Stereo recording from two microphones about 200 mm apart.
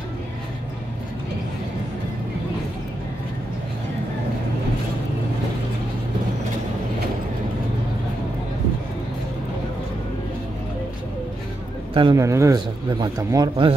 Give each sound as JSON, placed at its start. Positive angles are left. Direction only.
{"t": 11.9, "sound": "a man's voice", "side_deg": -20}